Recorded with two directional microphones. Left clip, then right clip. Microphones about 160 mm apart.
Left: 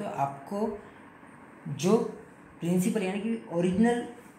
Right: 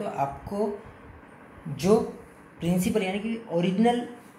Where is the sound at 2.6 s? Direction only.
20° right (ahead or behind).